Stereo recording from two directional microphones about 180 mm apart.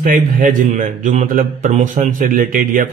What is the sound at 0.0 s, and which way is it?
A man's voice, 50° right (ahead or behind).